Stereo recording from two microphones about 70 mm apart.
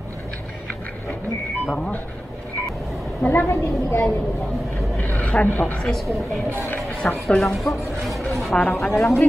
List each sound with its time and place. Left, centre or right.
3.3 s a woman's voice: left
4.9 s a sound: left
5.8 s a woman's voice: centre
8.9 s a woman's voice: centre